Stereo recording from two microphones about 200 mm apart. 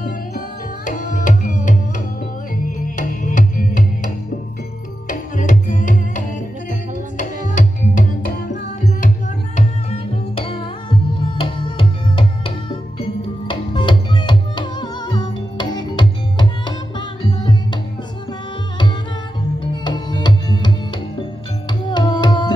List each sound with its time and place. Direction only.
0.8 s tabla: 40° left (ahead or behind)
2.5 s music: 45° left (ahead or behind)
5.3 s music: 40° left (ahead or behind)
6.7 s tabla: 40° left (ahead or behind)
9.8 s music: 25° left (ahead or behind)
19.8 s music: 20° left (ahead or behind)
21.9 s tabla: 20° left (ahead or behind)